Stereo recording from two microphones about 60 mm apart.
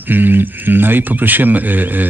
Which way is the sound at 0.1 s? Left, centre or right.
Right.